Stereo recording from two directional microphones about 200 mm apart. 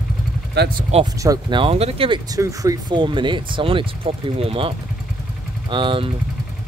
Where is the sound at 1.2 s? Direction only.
20° right (ahead or behind).